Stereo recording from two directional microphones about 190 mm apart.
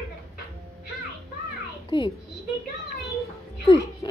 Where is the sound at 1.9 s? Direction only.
25° left (ahead or behind).